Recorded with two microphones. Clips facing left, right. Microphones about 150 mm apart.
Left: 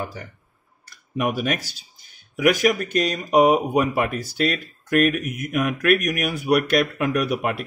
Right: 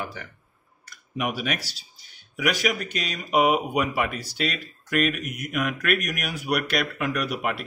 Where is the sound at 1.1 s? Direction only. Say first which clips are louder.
Left 5 dB; 50° left (ahead or behind).